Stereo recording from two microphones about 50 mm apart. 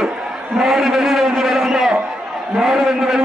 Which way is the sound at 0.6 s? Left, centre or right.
Centre.